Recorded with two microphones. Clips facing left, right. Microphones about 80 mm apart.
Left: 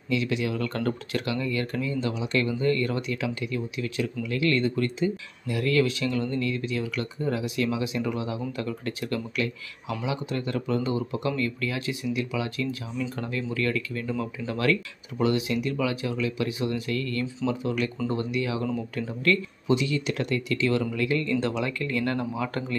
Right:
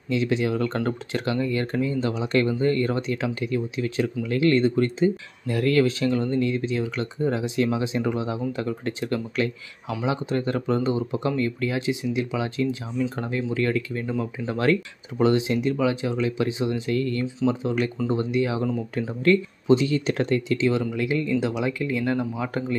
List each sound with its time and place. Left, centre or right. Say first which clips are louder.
0.1 s speech: right 3 dB; right; by 22.8 s centre